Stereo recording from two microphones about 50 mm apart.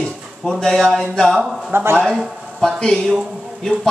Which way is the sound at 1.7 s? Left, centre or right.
Right.